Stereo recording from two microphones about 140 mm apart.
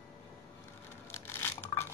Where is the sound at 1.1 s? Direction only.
15° left (ahead or behind).